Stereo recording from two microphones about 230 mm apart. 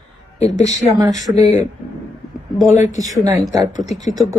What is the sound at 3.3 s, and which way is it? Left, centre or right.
Speech, centre.